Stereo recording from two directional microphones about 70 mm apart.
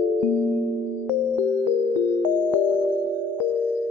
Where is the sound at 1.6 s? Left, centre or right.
Right.